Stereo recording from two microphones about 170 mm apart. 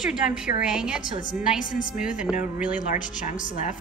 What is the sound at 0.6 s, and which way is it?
Speech, 5° right (ahead or behind).